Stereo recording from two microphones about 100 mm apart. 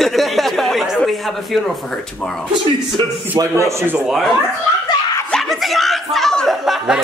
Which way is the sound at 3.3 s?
30° right (ahead or behind).